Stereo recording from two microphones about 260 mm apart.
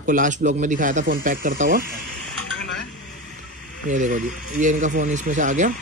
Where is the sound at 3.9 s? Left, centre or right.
Right.